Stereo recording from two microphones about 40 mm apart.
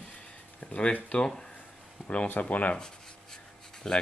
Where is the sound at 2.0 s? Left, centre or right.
Left.